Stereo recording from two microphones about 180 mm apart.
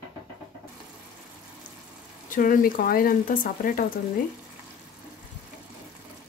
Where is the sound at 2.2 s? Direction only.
50° left (ahead or behind).